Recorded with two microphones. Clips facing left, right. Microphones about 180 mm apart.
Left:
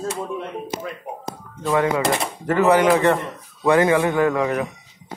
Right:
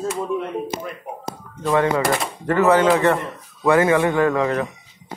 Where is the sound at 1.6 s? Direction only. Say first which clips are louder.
Right 1 dB; 10° left (ahead or behind).